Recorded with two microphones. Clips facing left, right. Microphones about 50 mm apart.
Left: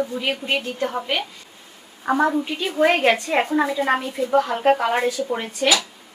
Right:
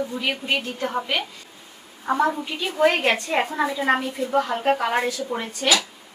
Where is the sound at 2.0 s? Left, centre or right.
Centre.